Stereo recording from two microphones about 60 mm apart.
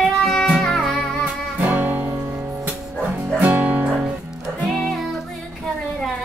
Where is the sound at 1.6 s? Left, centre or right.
Right.